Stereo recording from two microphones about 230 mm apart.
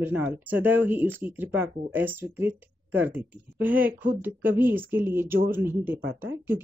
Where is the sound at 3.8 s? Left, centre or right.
Right.